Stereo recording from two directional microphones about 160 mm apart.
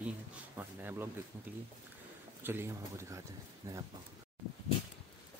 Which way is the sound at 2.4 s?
15° right (ahead or behind).